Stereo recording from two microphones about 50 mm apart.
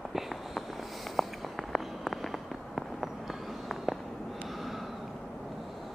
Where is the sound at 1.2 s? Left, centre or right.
Centre.